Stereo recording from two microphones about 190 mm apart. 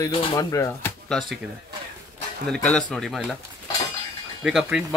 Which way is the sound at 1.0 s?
Centre (ahead or behind).